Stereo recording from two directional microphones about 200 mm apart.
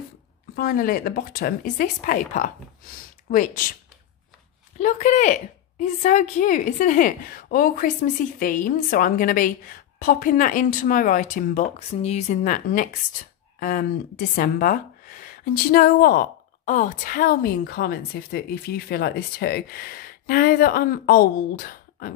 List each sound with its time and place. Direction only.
0.6 s speech: 45° left (ahead or behind)
4.7 s a woman's voice: 35° left (ahead or behind)